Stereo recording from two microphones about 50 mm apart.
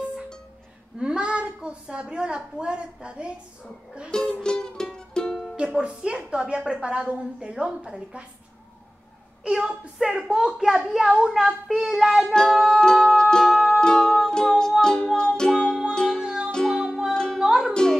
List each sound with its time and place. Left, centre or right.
0.9 s a woman's voice: centre
4.1 s music: centre
5.3 s music: centre
5.8 s a woman's voice: centre
9.4 s a child's voice: centre
13.1 s music: centre
15.5 s music: centre
15.9 s music: centre
16.8 s music: centre
17.1 s music: centre
17.4 s music: centre